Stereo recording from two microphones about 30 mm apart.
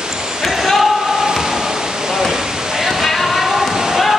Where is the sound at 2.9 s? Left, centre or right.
Centre.